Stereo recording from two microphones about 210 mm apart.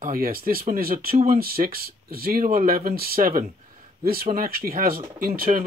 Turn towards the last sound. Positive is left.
turn(degrees=-40)  # may be behind; listen again after turning